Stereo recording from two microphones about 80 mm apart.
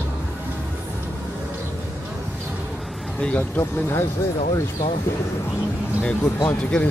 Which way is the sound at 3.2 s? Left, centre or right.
Centre.